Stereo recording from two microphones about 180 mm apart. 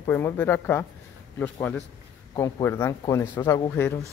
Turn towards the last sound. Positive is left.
turn(degrees=15)  # may be behind; listen again after turning